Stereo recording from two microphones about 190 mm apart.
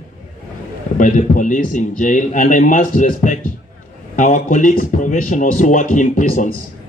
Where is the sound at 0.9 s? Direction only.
45° left (ahead or behind).